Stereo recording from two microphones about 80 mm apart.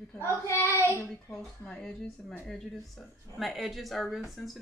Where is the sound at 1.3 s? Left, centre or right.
Centre.